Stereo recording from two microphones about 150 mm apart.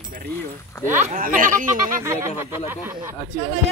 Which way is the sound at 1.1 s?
65° right (ahead or behind).